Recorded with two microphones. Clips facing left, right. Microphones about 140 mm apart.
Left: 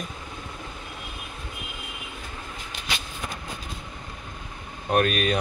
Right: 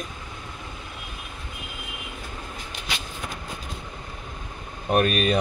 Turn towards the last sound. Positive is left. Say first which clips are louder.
# right 2 dB
turn(degrees=-35)  # may be behind; listen again after turning